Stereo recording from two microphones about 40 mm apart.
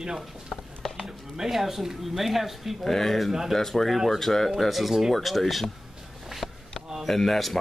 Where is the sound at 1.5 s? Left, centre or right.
Centre.